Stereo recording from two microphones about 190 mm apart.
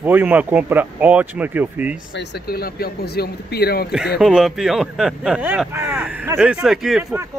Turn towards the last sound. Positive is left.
turn(degrees=0)  # may be behind; listen again after turning